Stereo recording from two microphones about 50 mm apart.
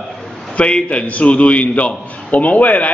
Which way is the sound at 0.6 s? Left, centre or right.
Left.